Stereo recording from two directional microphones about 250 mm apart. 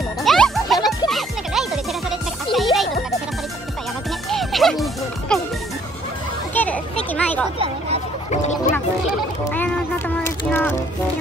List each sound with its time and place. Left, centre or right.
0.2 s music: centre
4.3 s music: centre
6.5 s a sound: centre
7.5 s a sound: right
8.3 s music: left
9.4 s music: centre